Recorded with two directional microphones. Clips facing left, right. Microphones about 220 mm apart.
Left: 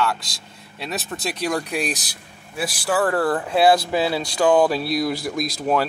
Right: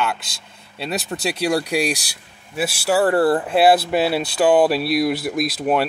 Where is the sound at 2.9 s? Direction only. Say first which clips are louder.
Right 4 dB; 30° right (ahead or behind).